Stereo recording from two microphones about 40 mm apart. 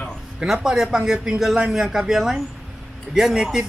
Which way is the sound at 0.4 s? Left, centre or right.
Centre.